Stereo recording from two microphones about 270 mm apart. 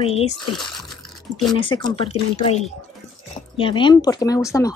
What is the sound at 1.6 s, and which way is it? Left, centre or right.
Speech, centre.